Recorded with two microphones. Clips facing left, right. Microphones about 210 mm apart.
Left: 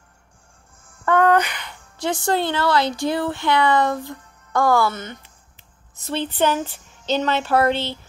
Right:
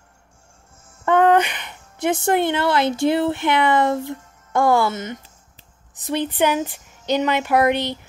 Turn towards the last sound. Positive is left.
turn(degrees=-15)  # may be behind; listen again after turning